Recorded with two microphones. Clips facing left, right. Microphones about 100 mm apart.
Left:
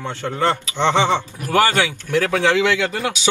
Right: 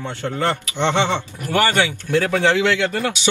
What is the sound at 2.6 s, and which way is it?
Speech, 15° left (ahead or behind).